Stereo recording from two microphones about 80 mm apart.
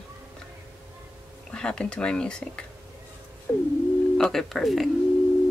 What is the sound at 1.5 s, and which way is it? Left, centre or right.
Speech, centre.